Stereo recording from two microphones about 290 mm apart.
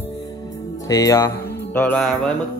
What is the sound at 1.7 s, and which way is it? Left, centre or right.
Music, centre.